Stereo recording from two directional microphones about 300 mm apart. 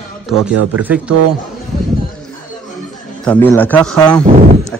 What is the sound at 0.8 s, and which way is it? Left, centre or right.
Speech, centre.